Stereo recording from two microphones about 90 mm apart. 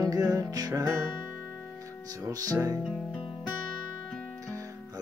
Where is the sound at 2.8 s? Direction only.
5° right (ahead or behind).